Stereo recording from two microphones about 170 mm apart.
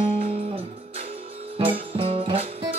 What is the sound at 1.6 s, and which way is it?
Music, 30° right (ahead or behind).